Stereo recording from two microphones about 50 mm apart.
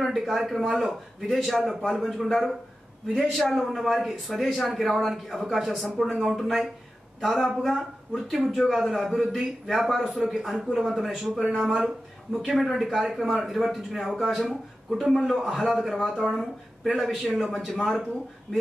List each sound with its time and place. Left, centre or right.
0.0 s a man's voice: centre